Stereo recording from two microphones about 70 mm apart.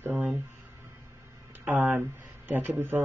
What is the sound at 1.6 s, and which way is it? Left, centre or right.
Speech, right.